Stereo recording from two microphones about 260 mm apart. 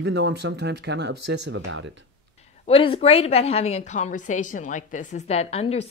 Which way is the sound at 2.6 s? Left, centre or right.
Left.